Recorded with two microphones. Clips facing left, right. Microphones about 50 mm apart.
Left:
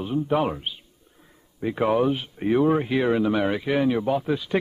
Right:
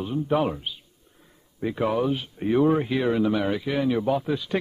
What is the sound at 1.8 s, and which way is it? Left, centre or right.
Speech, centre.